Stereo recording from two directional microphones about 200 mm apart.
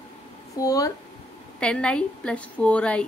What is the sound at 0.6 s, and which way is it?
Speech, 15° left (ahead or behind).